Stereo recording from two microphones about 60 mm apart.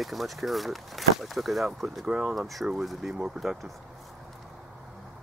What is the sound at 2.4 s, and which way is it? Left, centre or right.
Speech, centre.